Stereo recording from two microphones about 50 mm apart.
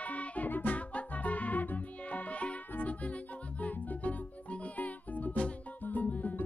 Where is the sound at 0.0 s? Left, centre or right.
Left.